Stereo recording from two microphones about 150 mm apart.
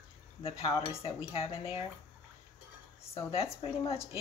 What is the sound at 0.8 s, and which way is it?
Speech, 40° left (ahead or behind).